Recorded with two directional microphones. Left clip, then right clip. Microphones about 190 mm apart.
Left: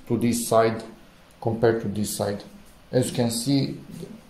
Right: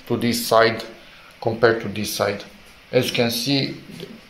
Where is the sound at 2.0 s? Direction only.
15° right (ahead or behind).